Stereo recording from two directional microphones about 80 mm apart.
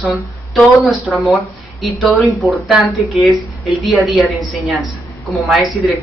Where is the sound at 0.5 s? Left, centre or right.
Centre.